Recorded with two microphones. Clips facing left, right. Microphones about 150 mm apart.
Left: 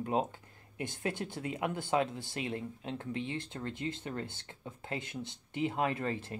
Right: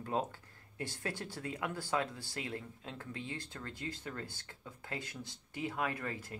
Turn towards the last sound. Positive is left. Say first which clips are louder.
# left 5 dB
turn(degrees=25)  # may be behind; listen again after turning